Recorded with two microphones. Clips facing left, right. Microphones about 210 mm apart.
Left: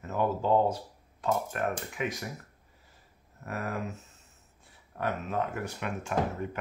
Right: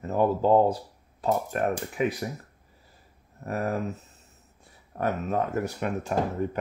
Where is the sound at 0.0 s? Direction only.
35° right (ahead or behind).